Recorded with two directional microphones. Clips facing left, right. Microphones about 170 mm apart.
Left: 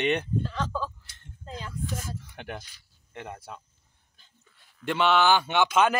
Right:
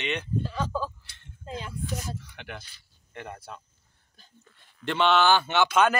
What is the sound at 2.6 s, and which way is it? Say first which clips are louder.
Speech: right 1 dB; 15° left (ahead or behind).